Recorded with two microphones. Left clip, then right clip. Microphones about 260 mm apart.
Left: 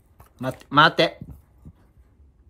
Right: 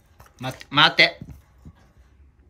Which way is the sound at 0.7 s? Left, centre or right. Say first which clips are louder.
Left 1 dB; centre.